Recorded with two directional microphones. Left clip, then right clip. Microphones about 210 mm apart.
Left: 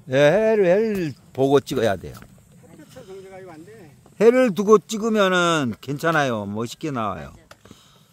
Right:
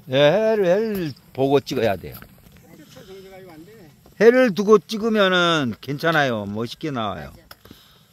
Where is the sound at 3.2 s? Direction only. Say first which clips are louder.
Left 2 dB; 30° left (ahead or behind).